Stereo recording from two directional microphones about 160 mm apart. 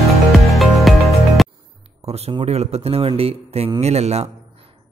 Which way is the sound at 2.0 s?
40° right (ahead or behind).